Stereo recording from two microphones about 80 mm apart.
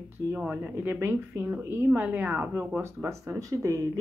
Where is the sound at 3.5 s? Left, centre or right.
Right.